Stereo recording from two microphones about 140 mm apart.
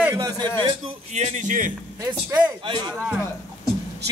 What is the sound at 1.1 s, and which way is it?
Speech, 55° right (ahead or behind).